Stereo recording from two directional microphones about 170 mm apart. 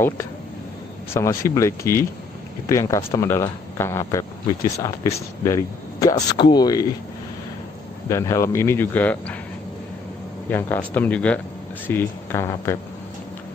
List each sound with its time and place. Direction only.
1.1 s speech: 20° left (ahead or behind)
8.1 s speech: 15° left (ahead or behind)
10.5 s speech: 10° left (ahead or behind)